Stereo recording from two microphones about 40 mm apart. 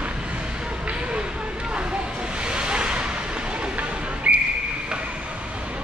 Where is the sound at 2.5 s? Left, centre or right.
Right.